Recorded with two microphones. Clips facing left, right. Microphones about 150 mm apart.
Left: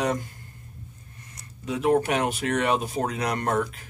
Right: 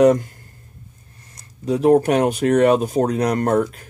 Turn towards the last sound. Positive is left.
turn(degrees=-45)  # may be behind; listen again after turning